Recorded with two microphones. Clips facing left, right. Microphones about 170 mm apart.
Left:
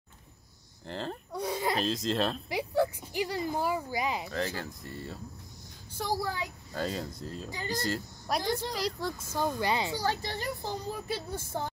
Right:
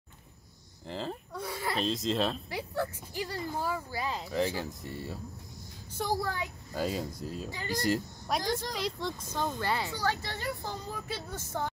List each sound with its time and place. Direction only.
0.8 s speech: centre (ahead or behind)
1.3 s a sound: 20° left (ahead or behind)
1.8 s speech: centre (ahead or behind)
2.5 s a child's voice: 15° left (ahead or behind)
4.3 s speech: 15° right (ahead or behind)
6.0 s speech: centre (ahead or behind)
6.7 s speech: 10° right (ahead or behind)
8.3 s a child's voice: centre (ahead or behind)